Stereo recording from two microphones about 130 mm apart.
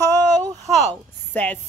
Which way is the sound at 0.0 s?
20° left (ahead or behind).